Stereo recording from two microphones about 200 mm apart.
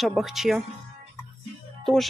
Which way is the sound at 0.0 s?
Centre (ahead or behind).